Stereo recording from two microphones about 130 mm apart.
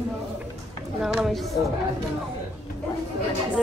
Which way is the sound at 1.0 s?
Centre (ahead or behind).